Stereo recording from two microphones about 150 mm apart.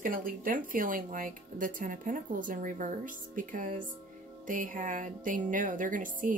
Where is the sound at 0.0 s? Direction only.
65° right (ahead or behind).